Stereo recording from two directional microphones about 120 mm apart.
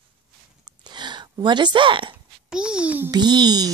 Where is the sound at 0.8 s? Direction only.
40° right (ahead or behind).